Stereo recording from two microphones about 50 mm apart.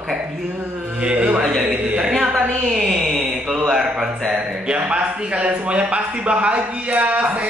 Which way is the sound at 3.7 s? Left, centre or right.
Centre.